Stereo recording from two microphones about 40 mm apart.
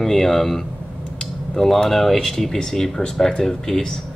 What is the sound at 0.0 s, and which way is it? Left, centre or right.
Speech, centre.